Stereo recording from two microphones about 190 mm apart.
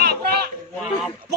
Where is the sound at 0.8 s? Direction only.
5° left (ahead or behind).